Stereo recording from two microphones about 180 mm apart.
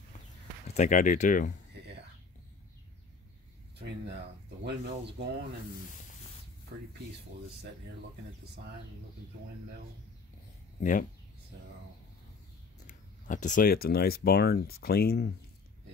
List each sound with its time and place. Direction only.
0.7 s speech: 45° left (ahead or behind)
4.6 s speech: 70° right (ahead or behind)
10.8 s speech: 45° left (ahead or behind)
12.8 s speech: 45° left (ahead or behind); by 15.2 s 60° left (ahead or behind)